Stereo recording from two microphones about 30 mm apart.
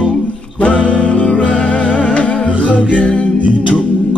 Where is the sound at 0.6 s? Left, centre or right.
Left.